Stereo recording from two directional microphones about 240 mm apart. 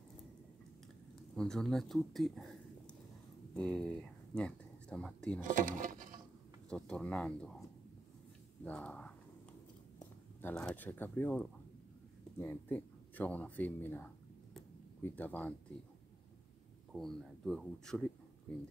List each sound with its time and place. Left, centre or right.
1.3 s speech: centre
3.5 s speech: centre
5.4 s speech: right
6.7 s speech: centre
8.6 s speech: centre
16.9 s speech: centre